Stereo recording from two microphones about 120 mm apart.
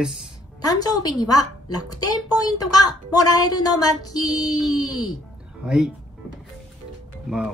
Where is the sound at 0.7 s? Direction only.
30° left (ahead or behind).